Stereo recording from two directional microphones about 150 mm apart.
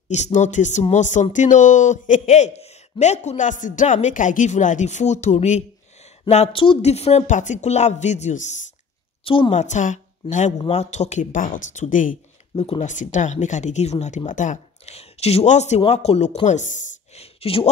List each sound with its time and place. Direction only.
0.1 s a man's voice: 50° left (ahead or behind)
9.2 s a woman's voice: 35° left (ahead or behind)
9.6 s a man's voice: 55° left (ahead or behind)
12.5 s speech: 40° left (ahead or behind)